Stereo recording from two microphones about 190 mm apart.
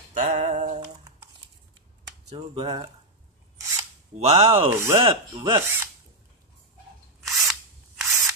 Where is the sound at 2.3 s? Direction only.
30° right (ahead or behind).